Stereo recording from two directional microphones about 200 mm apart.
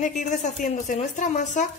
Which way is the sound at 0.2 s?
40° left (ahead or behind).